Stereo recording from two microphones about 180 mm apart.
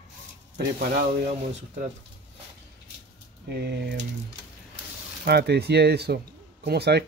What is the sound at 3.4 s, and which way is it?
Speech, 65° right (ahead or behind).